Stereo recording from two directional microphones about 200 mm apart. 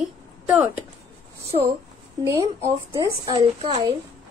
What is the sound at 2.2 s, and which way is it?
A woman's voice, 15° right (ahead or behind).